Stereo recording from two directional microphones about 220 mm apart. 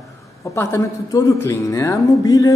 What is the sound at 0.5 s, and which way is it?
Speech, 15° left (ahead or behind).